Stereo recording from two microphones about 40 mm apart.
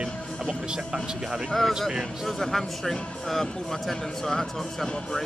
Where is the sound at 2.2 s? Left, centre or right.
Centre.